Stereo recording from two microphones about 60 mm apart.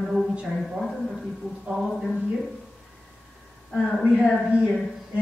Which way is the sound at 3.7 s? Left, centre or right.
Centre.